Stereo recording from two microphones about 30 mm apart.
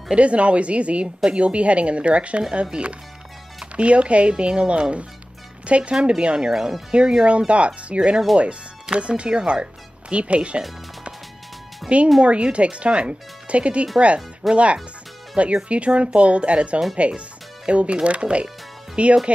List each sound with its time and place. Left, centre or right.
0.1 s speech: right
12.2 s speech: right